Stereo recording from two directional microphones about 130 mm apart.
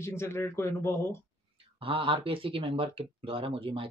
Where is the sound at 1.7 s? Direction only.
45° right (ahead or behind).